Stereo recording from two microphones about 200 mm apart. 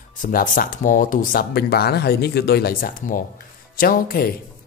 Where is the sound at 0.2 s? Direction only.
45° left (ahead or behind).